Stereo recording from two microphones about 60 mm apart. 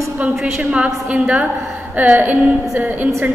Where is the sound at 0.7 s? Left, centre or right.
Centre.